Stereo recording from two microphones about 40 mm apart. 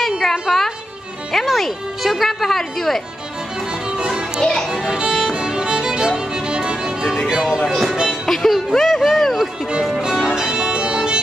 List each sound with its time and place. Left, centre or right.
0.2 s a woman's voice: centre
3.9 s music: centre
4.4 s a child's voice: centre
4.6 s music: centre
7.4 s music: centre
8.3 s speech: centre
8.7 s a sound: centre
10.3 s music: centre